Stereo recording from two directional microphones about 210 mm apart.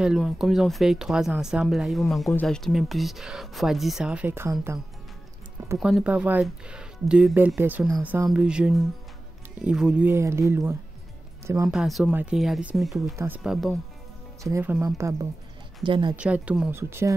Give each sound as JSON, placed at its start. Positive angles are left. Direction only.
{"t": 0.0, "sound": "speech", "side_deg": -5}
{"t": 5.8, "sound": "speech", "side_deg": 0}
{"t": 11.7, "sound": "speech", "side_deg": 0}
{"t": 13.1, "sound": "speech", "side_deg": -15}
{"t": 13.4, "sound": "speech", "side_deg": 0}
{"t": 14.4, "sound": "speech", "side_deg": -10}
{"t": 16.2, "sound": "speech", "side_deg": -5}